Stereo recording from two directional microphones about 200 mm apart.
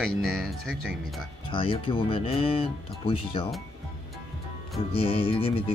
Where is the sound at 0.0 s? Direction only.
Centre (ahead or behind).